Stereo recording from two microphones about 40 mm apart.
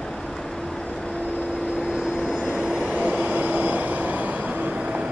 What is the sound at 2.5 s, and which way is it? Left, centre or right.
Train, centre.